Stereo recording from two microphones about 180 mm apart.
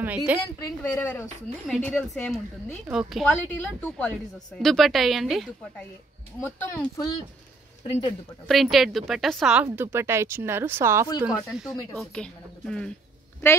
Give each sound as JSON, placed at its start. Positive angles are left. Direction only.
{"t": 0.3, "sound": "speech", "side_deg": -10}
{"t": 0.8, "sound": "a woman's voice", "side_deg": 10}
{"t": 7.8, "sound": "speech", "side_deg": 35}
{"t": 8.5, "sound": "a woman's voice", "side_deg": 0}
{"t": 9.7, "sound": "speech", "side_deg": -15}
{"t": 11.2, "sound": "a woman's voice", "side_deg": -5}